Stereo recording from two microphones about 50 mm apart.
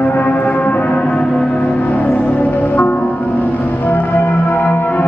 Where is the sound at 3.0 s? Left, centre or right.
Left.